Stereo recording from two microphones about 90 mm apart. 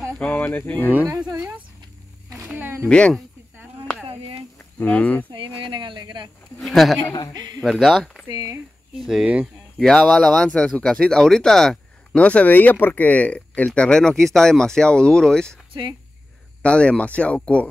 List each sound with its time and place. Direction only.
0.3 s speech: 25° left (ahead or behind)
1.1 s speech: 10° right (ahead or behind)
2.5 s speech: 25° right (ahead or behind)
2.9 s speech: 10° left (ahead or behind)
4.1 s a sound: 85° right
4.6 s speech: 15° left (ahead or behind)
5.3 s speech: 70° right (ahead or behind); by 6.3 s 55° right (ahead or behind)
6.6 s speech: centre (ahead or behind)
7.3 s speech: 50° right (ahead or behind)
7.6 s speech: centre (ahead or behind)
8.3 s speech: 45° right (ahead or behind)
9.0 s speech: 5° right (ahead or behind)
9.8 s speech: 10° left (ahead or behind)
16.6 s speech: 10° left (ahead or behind)